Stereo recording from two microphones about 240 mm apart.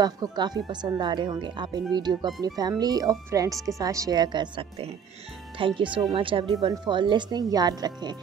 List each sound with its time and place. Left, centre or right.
0.0 s speech: centre